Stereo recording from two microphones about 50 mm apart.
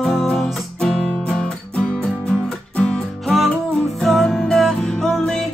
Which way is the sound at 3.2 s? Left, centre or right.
Centre.